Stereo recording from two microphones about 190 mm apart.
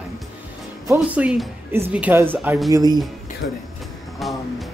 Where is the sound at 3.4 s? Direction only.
70° left (ahead or behind).